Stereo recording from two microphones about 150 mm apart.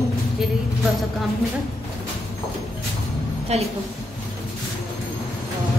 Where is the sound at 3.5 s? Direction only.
45° right (ahead or behind).